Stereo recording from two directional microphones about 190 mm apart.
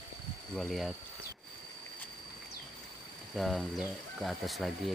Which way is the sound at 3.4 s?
Centre (ahead or behind).